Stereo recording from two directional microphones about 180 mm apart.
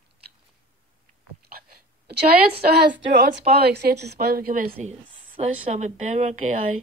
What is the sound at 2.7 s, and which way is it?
A woman's voice, 60° right (ahead or behind).